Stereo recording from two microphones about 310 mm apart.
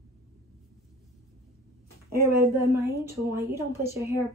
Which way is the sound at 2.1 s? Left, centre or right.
Right.